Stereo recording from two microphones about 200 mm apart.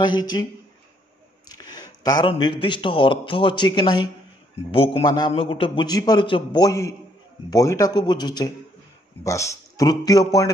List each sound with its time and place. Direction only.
0.0 s a man's voice: 20° left (ahead or behind)
1.5 s a man's voice: 20° left (ahead or behind)